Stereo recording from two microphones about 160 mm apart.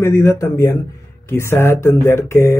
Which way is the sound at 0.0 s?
15° left (ahead or behind).